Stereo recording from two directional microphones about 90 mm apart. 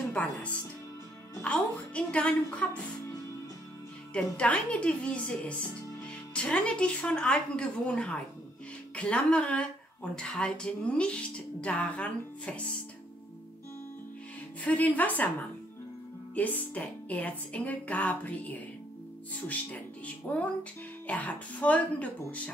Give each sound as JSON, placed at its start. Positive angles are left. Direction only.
{"t": 0.1, "sound": "music", "side_deg": 15}
{"t": 1.4, "sound": "a sound", "side_deg": 15}
{"t": 2.6, "sound": "speech", "side_deg": 15}
{"t": 4.1, "sound": "speech", "side_deg": 15}
{"t": 14.6, "sound": "speech", "side_deg": 15}
{"t": 16.3, "sound": "speech", "side_deg": 15}